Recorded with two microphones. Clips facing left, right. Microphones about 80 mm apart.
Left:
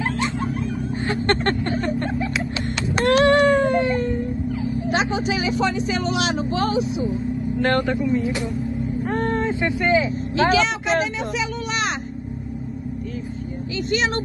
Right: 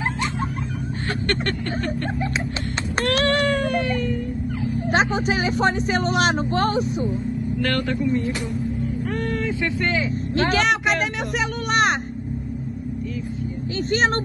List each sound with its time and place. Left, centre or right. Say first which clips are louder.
1.2 s vehicle: left 4 dB; left
3.1 s cat: left 6 dB; left
4.9 s vehicle: right 2 dB; right
9.1 s vehicle: left 5 dB; left
10.3 s vehicle: left 1 dB; right